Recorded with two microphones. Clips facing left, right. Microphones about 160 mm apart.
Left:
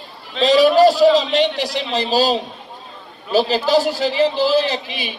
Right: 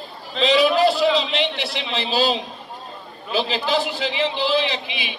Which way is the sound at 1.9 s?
40° left (ahead or behind).